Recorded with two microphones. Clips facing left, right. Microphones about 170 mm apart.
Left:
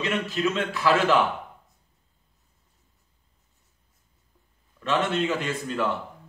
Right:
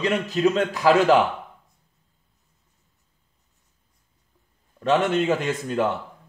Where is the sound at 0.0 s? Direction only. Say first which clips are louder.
Right 5 dB; 40° right (ahead or behind).